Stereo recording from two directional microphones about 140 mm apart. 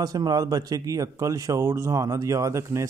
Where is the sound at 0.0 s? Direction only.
25° right (ahead or behind).